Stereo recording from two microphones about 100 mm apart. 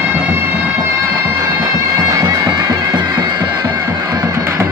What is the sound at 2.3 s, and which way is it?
Bagpipes, 45° right (ahead or behind).